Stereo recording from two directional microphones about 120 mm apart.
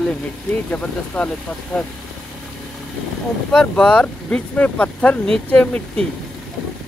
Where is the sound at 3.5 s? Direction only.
5° left (ahead or behind).